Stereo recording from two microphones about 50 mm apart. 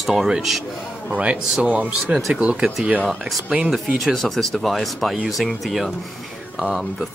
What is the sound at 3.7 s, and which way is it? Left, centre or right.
Speech, centre.